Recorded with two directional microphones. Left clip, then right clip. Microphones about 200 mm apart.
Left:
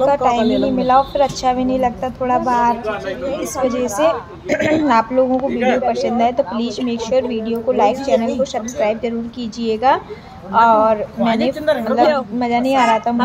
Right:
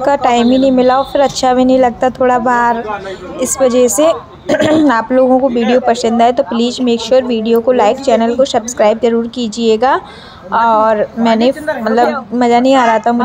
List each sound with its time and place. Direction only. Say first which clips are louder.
0.0 s a woman's voice: right 4 dB; 30° right (ahead or behind)
4.5 s a woman's voice: right 6 dB; 15° right (ahead or behind)
4.8 s a woman's voice: right 4 dB; 25° right (ahead or behind)